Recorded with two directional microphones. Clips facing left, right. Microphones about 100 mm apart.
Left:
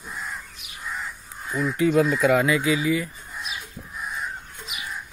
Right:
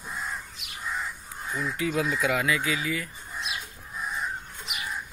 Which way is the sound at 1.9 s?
40° left (ahead or behind).